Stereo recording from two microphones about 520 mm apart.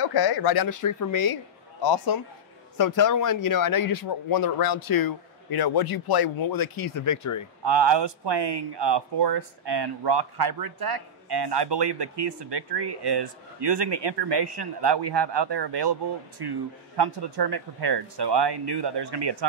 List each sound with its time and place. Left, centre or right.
0.1 s a man's voice: left
7.6 s speech: right